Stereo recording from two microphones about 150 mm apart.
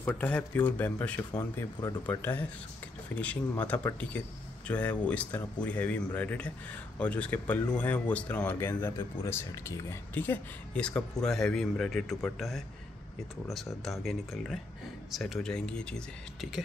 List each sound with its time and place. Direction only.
0.0 s speech: 10° left (ahead or behind)